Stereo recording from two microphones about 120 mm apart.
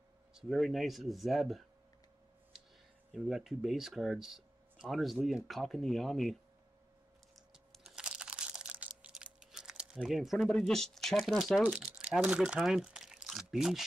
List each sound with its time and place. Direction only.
0.3 s speech: centre (ahead or behind)
3.1 s speech: 5° right (ahead or behind)
7.3 s a sound: centre (ahead or behind)
10.0 s speech: centre (ahead or behind)
11.8 s speech: 10° right (ahead or behind)